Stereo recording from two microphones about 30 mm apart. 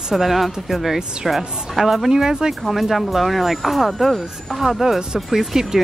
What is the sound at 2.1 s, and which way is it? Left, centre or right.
Speech, right.